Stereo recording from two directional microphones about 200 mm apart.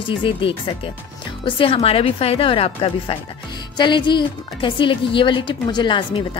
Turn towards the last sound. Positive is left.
turn(degrees=25)  # may be behind; listen again after turning